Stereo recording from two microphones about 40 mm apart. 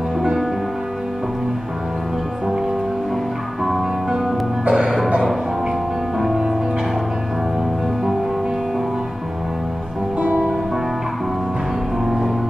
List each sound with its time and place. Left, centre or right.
0.2 s music: centre
3.6 s music: centre
4.6 s music: right
6.1 s music: centre